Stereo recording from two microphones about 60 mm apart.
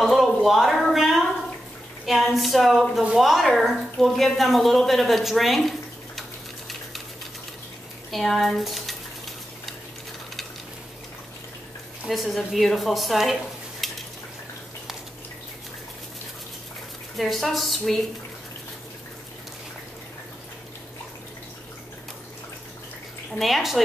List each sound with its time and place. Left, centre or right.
0.0 s a sound: centre
2.0 s a woman's voice: centre
8.1 s a woman's voice: centre
12.1 s a woman's voice: centre
17.2 s a woman's voice: centre
23.4 s a woman's voice: centre